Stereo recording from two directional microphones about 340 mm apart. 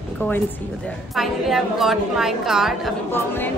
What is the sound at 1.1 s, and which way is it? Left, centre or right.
A woman's voice, centre.